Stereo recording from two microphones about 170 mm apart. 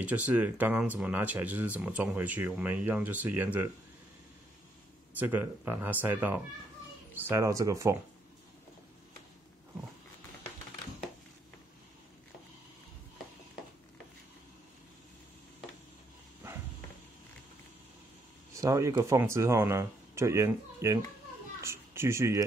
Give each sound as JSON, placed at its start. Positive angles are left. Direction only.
{"t": 0.0, "sound": "speech", "side_deg": -10}
{"t": 5.1, "sound": "speech", "side_deg": -10}
{"t": 18.5, "sound": "a child's voice", "side_deg": -20}